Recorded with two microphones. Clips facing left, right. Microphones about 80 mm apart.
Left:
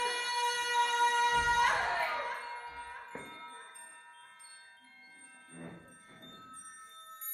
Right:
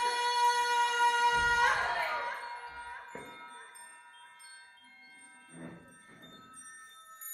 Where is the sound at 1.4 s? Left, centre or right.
Right.